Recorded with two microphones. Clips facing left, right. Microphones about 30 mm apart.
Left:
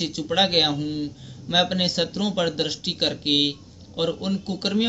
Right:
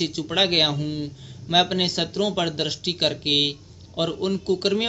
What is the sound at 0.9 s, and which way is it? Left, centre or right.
Speech, centre.